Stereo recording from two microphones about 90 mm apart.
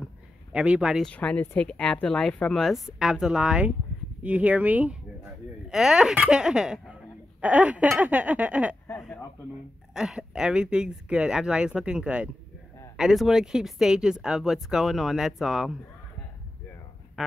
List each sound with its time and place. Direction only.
0.5 s speech: 10° right (ahead or behind)
1.0 s speech: 15° left (ahead or behind)
2.6 s speech: 5° right (ahead or behind)
5.7 s speech: 5° right (ahead or behind)
9.9 s speech: 5° right (ahead or behind)